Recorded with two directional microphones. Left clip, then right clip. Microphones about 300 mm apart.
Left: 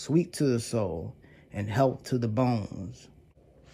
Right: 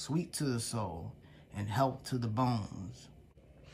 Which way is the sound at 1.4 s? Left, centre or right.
Centre.